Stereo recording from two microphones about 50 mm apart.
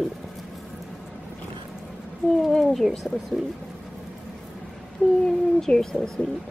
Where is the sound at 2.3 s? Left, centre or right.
Centre.